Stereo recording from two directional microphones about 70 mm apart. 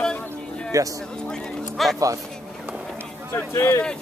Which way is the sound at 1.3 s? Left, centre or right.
Centre.